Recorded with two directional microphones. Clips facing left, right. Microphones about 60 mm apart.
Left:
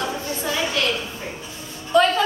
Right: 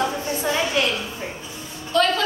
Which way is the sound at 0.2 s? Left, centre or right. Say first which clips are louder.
Right 2 dB; right.